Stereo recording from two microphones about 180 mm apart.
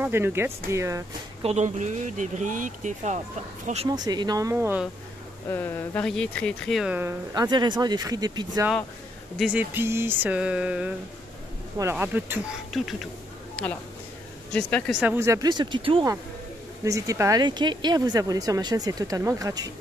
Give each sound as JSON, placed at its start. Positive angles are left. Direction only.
{"t": 0.0, "sound": "a sound", "side_deg": -15}
{"t": 1.4, "sound": "speech", "side_deg": -40}
{"t": 3.9, "sound": "speech", "side_deg": -20}
{"t": 5.5, "sound": "speech", "side_deg": 15}
{"t": 7.3, "sound": "speech", "side_deg": -25}
{"t": 9.4, "sound": "a sound", "side_deg": -10}
{"t": 12.7, "sound": "speech", "side_deg": 0}
{"t": 15.0, "sound": "speech", "side_deg": -10}